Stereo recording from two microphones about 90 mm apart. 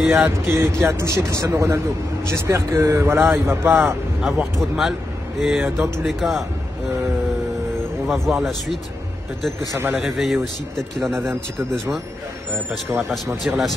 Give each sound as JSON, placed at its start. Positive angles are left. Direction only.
{"t": 0.1, "sound": "a man's voice", "side_deg": -30}
{"t": 4.2, "sound": "a man's voice", "side_deg": 0}
{"t": 8.1, "sound": "a man's voice", "side_deg": -5}
{"t": 9.9, "sound": "a man's voice", "side_deg": 0}
{"t": 13.1, "sound": "a man's voice", "side_deg": 0}